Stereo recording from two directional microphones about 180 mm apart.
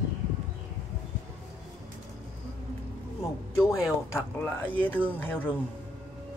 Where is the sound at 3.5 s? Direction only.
5° right (ahead or behind).